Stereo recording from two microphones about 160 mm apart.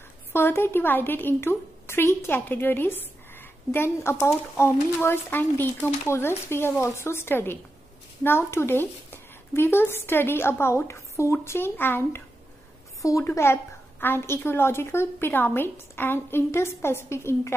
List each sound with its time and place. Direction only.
0.3 s a woman's voice: 15° left (ahead or behind)